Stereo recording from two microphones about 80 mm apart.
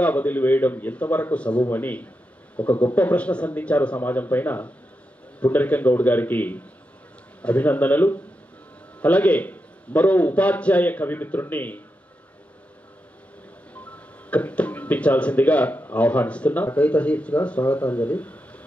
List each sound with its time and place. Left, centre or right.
0.0 s a man's voice: left
13.7 s a sound: centre
15.9 s speech: centre